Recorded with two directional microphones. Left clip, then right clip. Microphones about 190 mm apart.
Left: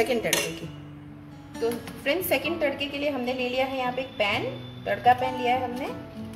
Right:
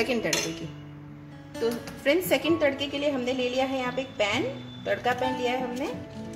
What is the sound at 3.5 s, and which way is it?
Speech, 40° right (ahead or behind).